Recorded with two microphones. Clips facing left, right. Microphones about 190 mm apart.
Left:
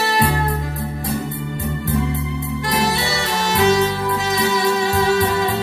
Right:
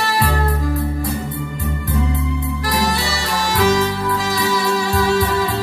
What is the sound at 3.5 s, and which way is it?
Music, 25° left (ahead or behind).